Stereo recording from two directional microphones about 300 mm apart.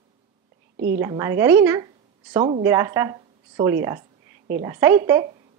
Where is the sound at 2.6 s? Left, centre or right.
Centre.